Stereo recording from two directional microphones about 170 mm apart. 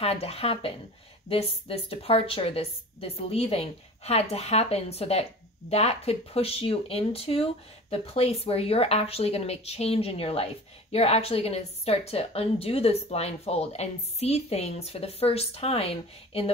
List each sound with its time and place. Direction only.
0.0 s speech: 35° left (ahead or behind)